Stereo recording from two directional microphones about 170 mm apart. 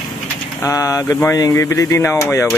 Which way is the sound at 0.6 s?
15° left (ahead or behind).